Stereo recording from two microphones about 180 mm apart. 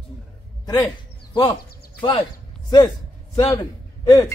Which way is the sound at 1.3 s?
25° left (ahead or behind).